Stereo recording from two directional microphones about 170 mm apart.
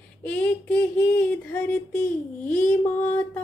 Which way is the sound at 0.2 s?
5° left (ahead or behind).